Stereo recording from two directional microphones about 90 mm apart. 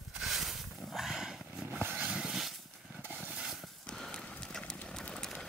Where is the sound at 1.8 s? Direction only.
25° right (ahead or behind).